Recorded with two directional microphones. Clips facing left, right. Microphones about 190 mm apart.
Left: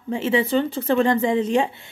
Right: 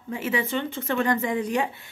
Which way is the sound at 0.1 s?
30° left (ahead or behind).